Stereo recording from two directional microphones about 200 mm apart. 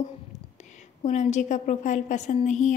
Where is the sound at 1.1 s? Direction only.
35° left (ahead or behind).